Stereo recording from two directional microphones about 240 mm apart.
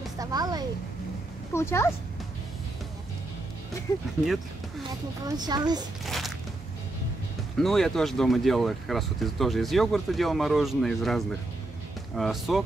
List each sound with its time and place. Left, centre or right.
0.2 s a sound: centre
1.5 s speech: centre
3.9 s speech: centre
4.8 s speech: centre
6.0 s a sound: centre
7.5 s speech: centre